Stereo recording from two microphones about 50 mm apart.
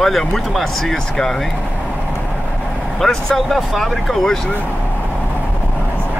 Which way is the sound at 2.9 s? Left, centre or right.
Centre.